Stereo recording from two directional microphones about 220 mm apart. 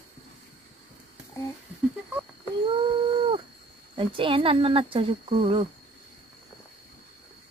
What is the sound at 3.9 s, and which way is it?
Speech, 25° right (ahead or behind).